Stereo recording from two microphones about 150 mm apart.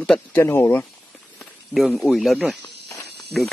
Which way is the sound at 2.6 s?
20° left (ahead or behind).